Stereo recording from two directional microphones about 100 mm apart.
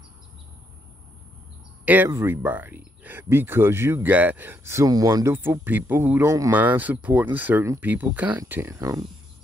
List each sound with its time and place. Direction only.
2.0 s speech: 25° right (ahead or behind)
4.8 s speech: 40° right (ahead or behind)
5.3 s speech: 25° right (ahead or behind)